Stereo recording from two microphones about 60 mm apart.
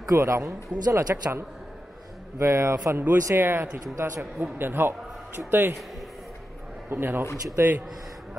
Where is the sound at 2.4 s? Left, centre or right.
Right.